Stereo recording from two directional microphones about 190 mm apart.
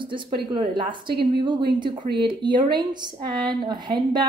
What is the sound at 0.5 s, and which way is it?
A woman's voice, 25° right (ahead or behind).